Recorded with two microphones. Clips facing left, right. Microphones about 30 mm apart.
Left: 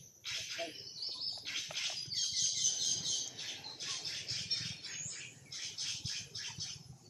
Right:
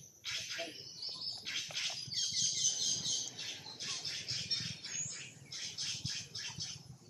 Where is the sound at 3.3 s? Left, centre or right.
Centre.